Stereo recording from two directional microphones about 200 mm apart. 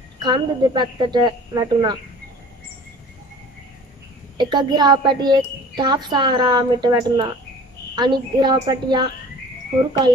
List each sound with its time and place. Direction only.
0.2 s a woman's voice: 20° right (ahead or behind)
4.4 s a woman's voice: 20° right (ahead or behind)